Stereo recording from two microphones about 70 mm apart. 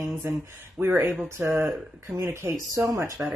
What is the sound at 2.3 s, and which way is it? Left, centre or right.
Speech, right.